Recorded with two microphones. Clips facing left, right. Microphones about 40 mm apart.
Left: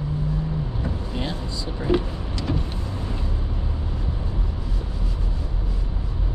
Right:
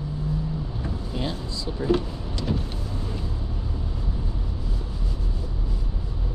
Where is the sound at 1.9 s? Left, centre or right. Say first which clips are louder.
Left 1 dB; left.